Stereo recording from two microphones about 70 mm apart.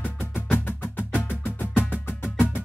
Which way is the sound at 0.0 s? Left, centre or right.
Left.